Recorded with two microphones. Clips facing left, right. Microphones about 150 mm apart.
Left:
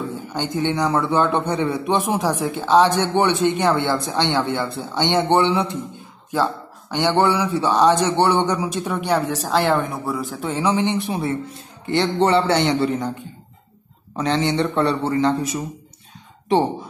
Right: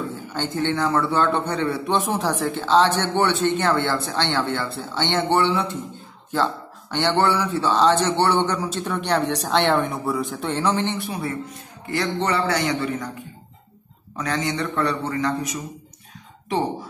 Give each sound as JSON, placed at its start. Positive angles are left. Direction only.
{"t": 0.3, "sound": "speech", "side_deg": 15}
{"t": 14.1, "sound": "a man's voice", "side_deg": 30}